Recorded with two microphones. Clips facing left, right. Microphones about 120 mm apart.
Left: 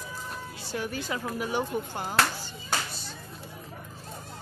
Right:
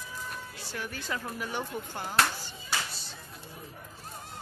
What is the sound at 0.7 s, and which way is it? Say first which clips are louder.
Speech: left 4 dB; 15° left (ahead or behind).